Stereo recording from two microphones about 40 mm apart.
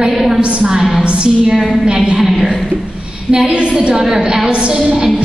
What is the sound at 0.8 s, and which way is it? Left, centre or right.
Speech, centre.